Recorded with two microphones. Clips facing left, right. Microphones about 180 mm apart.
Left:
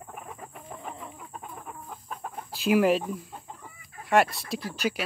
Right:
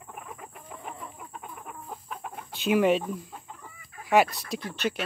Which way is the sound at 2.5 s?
Centre (ahead or behind).